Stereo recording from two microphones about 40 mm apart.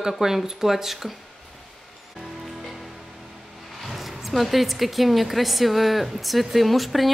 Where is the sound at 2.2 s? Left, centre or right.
Centre.